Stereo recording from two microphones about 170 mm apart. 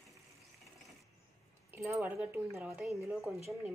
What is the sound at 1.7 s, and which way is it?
Speech, 15° right (ahead or behind).